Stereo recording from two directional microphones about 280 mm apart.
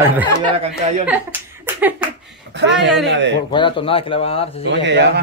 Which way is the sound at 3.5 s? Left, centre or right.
Centre.